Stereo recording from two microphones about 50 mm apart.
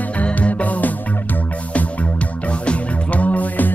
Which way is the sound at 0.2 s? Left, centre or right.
Left.